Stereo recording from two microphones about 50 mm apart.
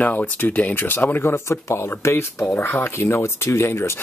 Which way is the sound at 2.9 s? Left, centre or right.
Left.